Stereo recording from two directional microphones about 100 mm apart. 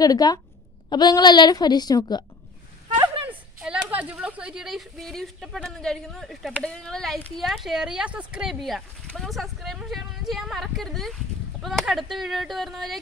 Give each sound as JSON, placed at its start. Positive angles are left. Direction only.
{"t": 0.0, "sound": "a woman's voice", "side_deg": 40}
{"t": 3.3, "sound": "speech", "side_deg": -10}